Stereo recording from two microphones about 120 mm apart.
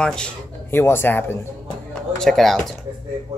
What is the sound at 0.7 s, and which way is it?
Speech, 20° left (ahead or behind).